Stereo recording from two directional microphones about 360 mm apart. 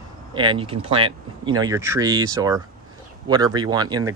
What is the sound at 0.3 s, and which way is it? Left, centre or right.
Speech, centre.